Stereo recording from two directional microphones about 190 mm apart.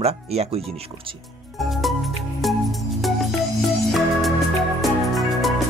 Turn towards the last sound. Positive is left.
turn(degrees=0)  # may be behind; listen again after turning